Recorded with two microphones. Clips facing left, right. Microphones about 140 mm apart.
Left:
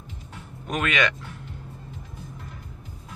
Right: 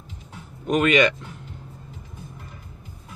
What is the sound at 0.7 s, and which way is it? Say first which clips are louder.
Speech: right 7 dB; centre (ahead or behind).